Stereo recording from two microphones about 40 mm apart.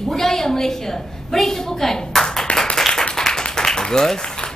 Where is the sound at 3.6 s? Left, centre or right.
Centre.